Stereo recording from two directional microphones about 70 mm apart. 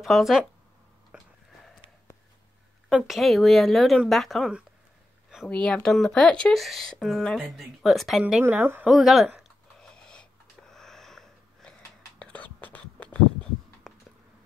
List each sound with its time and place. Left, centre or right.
0.0 s speech: centre
1.1 s a sound: centre
3.1 s speech: centre
5.5 s speech: centre
8.4 s speech: right
8.8 s speech: centre
9.8 s a sound: centre
10.7 s sniff: centre
12.2 s whispering: centre
13.9 s a sound: centre